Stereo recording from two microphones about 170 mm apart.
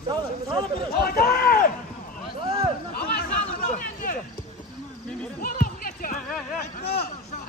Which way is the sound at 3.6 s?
50° left (ahead or behind).